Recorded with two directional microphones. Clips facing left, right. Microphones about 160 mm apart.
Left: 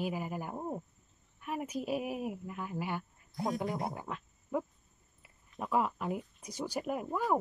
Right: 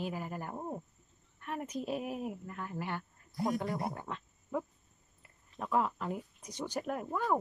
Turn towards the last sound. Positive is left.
turn(degrees=10)  # may be behind; listen again after turning